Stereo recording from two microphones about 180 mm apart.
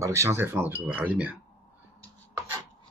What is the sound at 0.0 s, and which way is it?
Speech, 15° right (ahead or behind).